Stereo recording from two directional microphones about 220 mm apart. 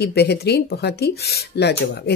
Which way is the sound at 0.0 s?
50° left (ahead or behind).